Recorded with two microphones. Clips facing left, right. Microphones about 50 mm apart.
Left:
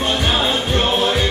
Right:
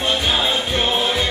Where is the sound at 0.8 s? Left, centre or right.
Left.